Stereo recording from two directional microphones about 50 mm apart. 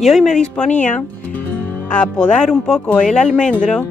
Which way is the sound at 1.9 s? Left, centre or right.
Left.